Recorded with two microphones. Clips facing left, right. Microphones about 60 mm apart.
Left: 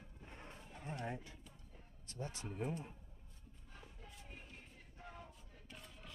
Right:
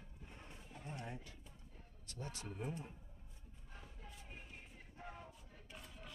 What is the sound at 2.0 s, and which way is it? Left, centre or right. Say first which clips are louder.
Speech: left 2 dB; left.